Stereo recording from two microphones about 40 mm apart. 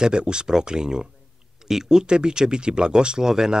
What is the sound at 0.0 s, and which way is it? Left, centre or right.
Speech, right.